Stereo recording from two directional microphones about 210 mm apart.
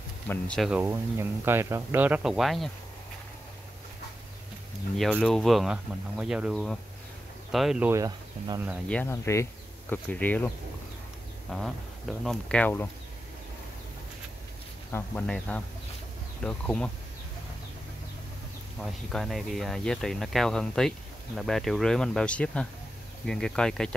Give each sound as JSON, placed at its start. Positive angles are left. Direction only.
{"t": 0.3, "sound": "speech", "side_deg": 5}
{"t": 4.9, "sound": "speech", "side_deg": 0}
{"t": 8.8, "sound": "speech", "side_deg": 10}
{"t": 11.5, "sound": "speech", "side_deg": 0}
{"t": 14.9, "sound": "speech", "side_deg": 10}
{"t": 18.9, "sound": "speech", "side_deg": 0}